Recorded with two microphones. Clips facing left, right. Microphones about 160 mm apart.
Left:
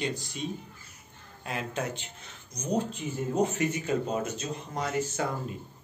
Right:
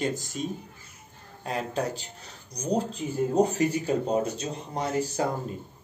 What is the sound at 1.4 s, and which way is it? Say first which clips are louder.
Speech: right 4 dB; 35° right (ahead or behind).